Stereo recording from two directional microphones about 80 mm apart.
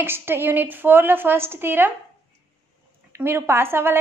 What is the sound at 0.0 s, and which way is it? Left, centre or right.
A woman's voice, right.